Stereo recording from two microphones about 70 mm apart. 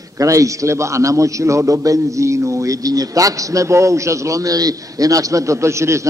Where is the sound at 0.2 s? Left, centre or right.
Right.